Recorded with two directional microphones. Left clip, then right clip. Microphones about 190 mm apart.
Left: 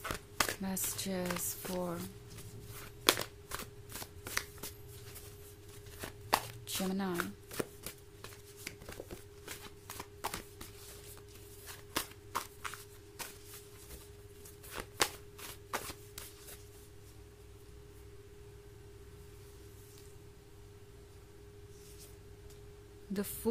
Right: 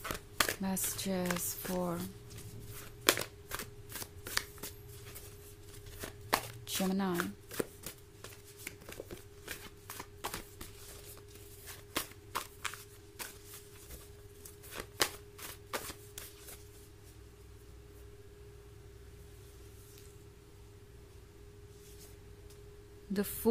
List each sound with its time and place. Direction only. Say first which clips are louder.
0.0 s a sound: right 1 dB; 5° left (ahead or behind)
0.6 s speech: right 2 dB; 10° right (ahead or behind)
2.7 s shuffling cards: even; 5° left (ahead or behind)
5.9 s walk: left 1 dB; 5° left (ahead or behind)
6.6 s speech: right 2 dB; 10° right (ahead or behind)
7.4 s shuffling cards: right 1 dB; centre (ahead or behind)
11.6 s walk: even; 5° left (ahead or behind)
14.7 s a sound: even; 10° left (ahead or behind)
23.4 s a sound: right 5 dB; 15° right (ahead or behind)